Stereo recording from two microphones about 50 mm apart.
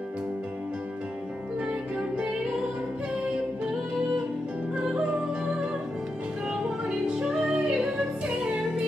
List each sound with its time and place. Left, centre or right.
2.0 s music: right
4.7 s music: centre
7.1 s music: centre